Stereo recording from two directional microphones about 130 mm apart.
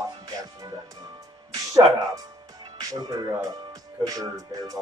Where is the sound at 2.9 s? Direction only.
30° right (ahead or behind).